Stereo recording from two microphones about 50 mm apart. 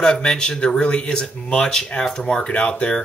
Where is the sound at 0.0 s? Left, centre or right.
Centre.